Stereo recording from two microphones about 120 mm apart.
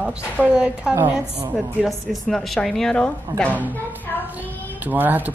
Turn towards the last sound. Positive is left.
turn(degrees=-15)  # may be behind; listen again after turning